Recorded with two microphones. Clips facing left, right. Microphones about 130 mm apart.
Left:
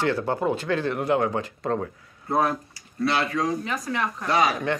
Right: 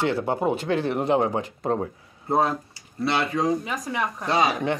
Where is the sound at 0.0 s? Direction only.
20° right (ahead or behind).